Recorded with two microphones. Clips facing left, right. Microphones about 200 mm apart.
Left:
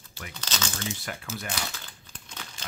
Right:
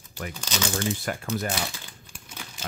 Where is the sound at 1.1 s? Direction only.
45° right (ahead or behind).